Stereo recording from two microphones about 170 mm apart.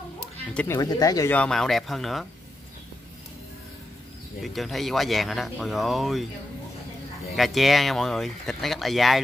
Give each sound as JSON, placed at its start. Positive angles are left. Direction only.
{"t": 0.7, "sound": "speech", "side_deg": 20}
{"t": 1.3, "sound": "speech", "side_deg": 5}
{"t": 4.4, "sound": "speech", "side_deg": 0}
{"t": 7.3, "sound": "speech", "side_deg": 0}